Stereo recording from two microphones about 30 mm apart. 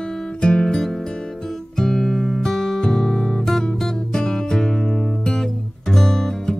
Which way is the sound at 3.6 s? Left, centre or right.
Centre.